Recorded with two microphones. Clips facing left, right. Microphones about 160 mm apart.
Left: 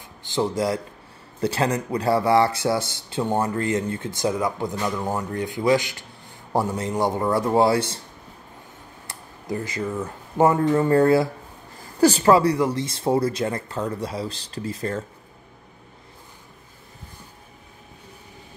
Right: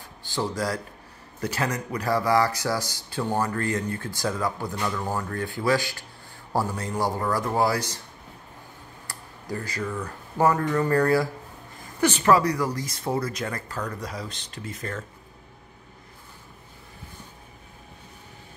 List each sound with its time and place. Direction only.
0.2 s a man's voice: 20° left (ahead or behind)
9.0 s speech: 20° left (ahead or behind)